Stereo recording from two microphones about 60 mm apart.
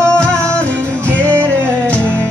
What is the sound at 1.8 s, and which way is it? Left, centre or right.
Music, left.